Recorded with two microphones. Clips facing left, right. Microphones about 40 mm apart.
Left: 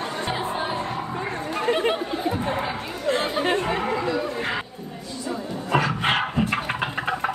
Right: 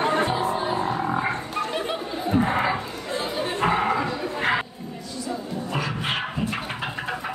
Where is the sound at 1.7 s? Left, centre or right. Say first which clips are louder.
Left 5 dB; left.